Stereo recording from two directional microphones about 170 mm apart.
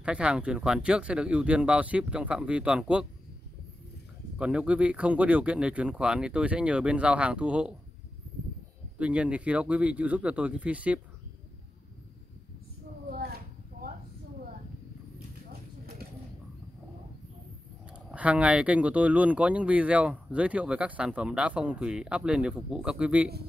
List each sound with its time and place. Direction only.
0.0 s speech: 5° right (ahead or behind)
4.4 s speech: 5° right (ahead or behind)
8.9 s speech: 5° right (ahead or behind)
13.1 s a sound: 65° right (ahead or behind)
17.9 s speech: 10° right (ahead or behind)